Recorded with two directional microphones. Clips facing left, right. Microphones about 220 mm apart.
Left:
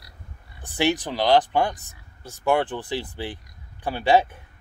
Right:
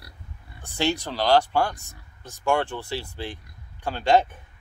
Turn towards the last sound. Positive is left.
turn(degrees=10)  # may be behind; listen again after turning